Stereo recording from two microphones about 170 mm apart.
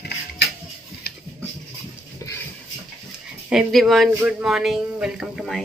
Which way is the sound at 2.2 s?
15° left (ahead or behind).